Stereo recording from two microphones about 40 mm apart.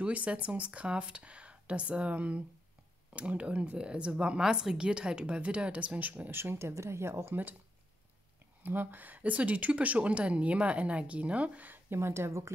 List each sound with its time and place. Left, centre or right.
0.0 s a woman's voice: right
4.4 s a woman's voice: centre; by 6.1 s right
6.3 s speech: right
8.6 s speech: right
9.3 s speech: right
11.9 s speech: right